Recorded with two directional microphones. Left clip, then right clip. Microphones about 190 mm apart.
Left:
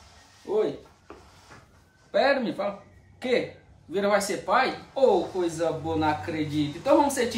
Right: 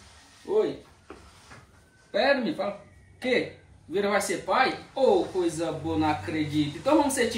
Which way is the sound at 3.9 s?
25° left (ahead or behind).